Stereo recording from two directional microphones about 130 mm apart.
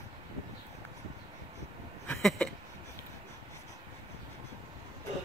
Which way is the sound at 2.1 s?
5° left (ahead or behind).